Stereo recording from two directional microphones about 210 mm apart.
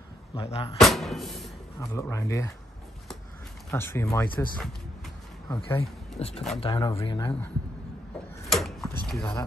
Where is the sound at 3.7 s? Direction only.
10° left (ahead or behind).